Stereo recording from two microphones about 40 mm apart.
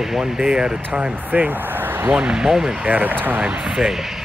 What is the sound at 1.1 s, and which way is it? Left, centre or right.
Speech, right.